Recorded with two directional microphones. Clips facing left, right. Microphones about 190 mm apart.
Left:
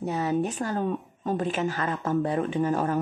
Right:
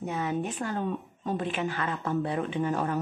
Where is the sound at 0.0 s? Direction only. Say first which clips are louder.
Left 4 dB; 35° left (ahead or behind).